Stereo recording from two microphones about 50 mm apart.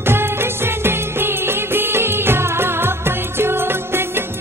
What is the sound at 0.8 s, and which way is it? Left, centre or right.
Music, right.